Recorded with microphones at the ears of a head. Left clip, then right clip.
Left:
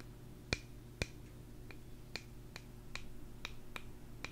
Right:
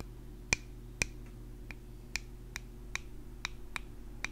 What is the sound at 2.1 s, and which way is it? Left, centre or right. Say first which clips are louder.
Finger snapping: right 8 dB; right.